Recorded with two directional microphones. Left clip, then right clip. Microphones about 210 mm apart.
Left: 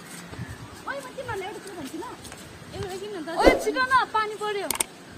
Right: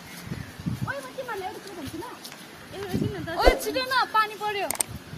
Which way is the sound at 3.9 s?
40° right (ahead or behind).